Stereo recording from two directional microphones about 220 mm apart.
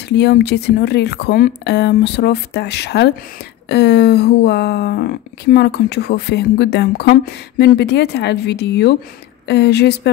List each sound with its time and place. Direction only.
0.1 s speech: 50° left (ahead or behind)